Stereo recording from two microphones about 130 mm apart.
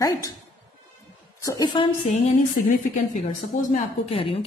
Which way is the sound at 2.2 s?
70° left (ahead or behind).